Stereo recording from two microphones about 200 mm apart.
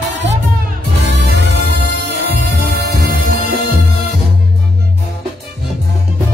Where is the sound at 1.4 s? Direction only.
55° right (ahead or behind).